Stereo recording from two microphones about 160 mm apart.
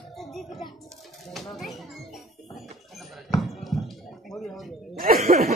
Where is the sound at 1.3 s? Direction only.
Centre (ahead or behind).